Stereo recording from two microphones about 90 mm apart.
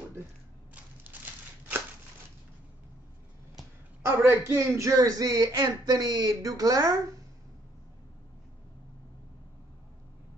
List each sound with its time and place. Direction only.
1.0 s a sound: 20° right (ahead or behind)
4.0 s a woman's voice: 30° right (ahead or behind)
4.7 s speech: 40° right (ahead or behind)